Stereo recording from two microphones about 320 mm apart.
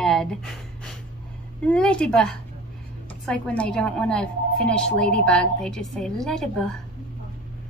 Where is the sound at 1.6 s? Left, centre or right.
Centre.